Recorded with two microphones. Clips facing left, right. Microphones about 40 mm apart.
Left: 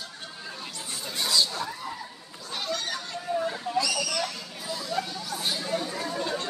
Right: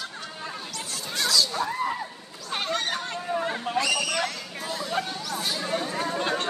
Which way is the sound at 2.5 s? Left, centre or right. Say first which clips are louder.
Right 4 dB; right.